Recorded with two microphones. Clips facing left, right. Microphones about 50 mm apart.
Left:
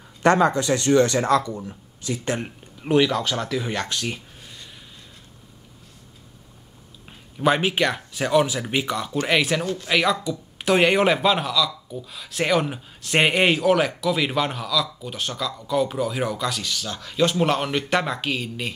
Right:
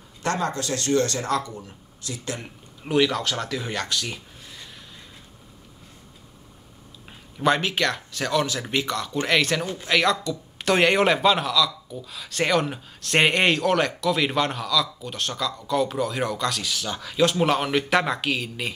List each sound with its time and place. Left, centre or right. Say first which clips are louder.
0.2 s speech: left 8 dB; left
3.0 s speech: even; centre
3.8 s speech: left 1 dB; left
7.4 s speech: left 2 dB; centre
16.7 s speech: right 1 dB; centre
17.0 s speech: even; centre